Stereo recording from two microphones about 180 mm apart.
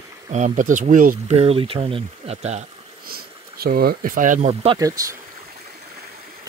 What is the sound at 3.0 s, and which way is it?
Speech, 55° right (ahead or behind).